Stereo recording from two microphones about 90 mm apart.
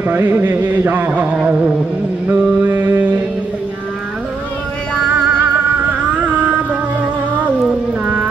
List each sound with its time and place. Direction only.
0.0 s a sound: 25° right (ahead or behind)
2.2 s mantra: 20° right (ahead or behind)
5.3 s music: 15° right (ahead or behind)
7.6 s cat: 15° right (ahead or behind)